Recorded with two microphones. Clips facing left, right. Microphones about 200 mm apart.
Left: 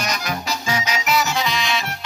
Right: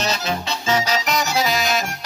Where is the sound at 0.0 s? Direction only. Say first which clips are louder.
Right 2 dB; 30° right (ahead or behind).